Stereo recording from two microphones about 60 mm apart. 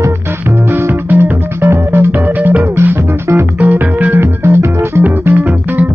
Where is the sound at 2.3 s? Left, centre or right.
Right.